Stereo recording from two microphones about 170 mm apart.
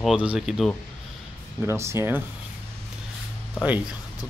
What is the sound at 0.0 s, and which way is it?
Speech, 5° right (ahead or behind).